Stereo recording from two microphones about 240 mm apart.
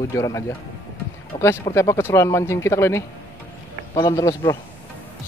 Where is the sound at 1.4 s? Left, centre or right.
Centre.